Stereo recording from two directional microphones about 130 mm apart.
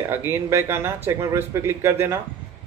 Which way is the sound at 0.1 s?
20° right (ahead or behind).